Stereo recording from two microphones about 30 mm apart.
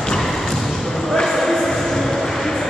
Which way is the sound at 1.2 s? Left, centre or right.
Centre.